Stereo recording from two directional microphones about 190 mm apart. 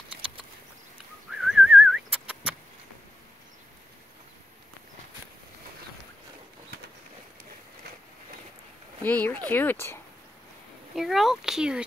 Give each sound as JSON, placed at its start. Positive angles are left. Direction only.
{"t": 1.4, "sound": "whistling", "side_deg": 0}
{"t": 9.0, "sound": "speech", "side_deg": 10}
{"t": 11.0, "sound": "speech", "side_deg": 0}